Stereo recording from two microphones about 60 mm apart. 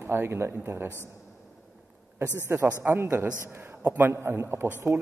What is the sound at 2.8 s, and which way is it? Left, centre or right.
A man's voice, right.